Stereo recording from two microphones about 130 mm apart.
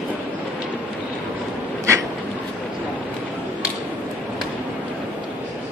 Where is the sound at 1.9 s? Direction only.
25° right (ahead or behind).